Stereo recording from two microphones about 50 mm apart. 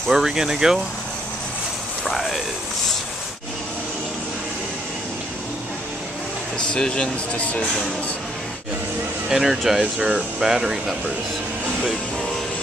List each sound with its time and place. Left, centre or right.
0.1 s speech: centre
2.0 s a sound: centre
6.7 s speech: left
7.6 s speech: centre
9.3 s speech: centre